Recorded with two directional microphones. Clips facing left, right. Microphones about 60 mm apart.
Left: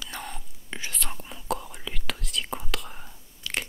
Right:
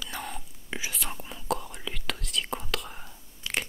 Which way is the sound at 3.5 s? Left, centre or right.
Right.